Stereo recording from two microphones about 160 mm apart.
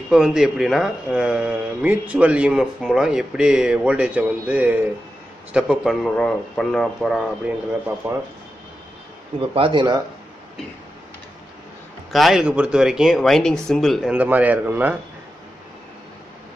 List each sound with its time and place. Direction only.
0.1 s a man's voice: 5° right (ahead or behind)
8.0 s a man's voice: 15° right (ahead or behind)
9.4 s speech: 35° right (ahead or behind)
12.1 s a man's voice: centre (ahead or behind)
14.1 s a man's voice: 10° right (ahead or behind)